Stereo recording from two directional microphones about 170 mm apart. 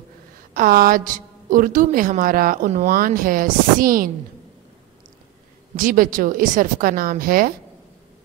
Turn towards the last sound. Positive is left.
turn(degrees=-55)  # may be behind; listen again after turning